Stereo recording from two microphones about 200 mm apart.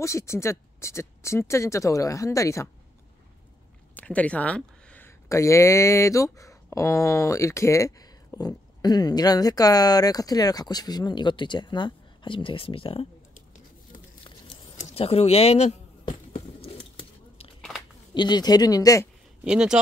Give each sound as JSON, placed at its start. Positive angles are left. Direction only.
{"t": 0.0, "sound": "speech", "side_deg": 15}
{"t": 3.9, "sound": "speech", "side_deg": 5}
{"t": 14.8, "sound": "a sound", "side_deg": 35}
{"t": 17.6, "sound": "a sound", "side_deg": 0}
{"t": 18.1, "sound": "speech", "side_deg": 20}
{"t": 19.4, "sound": "speech", "side_deg": -5}